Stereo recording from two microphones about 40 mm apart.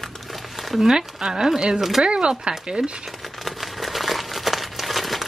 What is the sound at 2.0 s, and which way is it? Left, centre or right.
Speech, centre.